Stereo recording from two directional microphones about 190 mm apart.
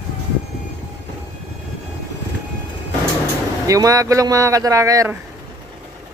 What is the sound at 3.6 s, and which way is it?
Speech, 20° right (ahead or behind).